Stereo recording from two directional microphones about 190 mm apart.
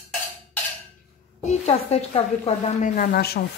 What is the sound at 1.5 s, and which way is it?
A woman's voice, 35° left (ahead or behind).